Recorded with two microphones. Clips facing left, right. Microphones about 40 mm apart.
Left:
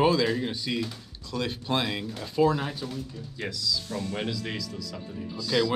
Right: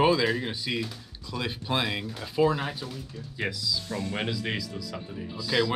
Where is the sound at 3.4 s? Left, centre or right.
Centre.